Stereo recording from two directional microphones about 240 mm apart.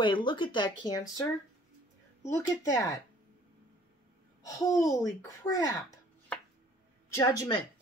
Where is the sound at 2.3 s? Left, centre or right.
Centre.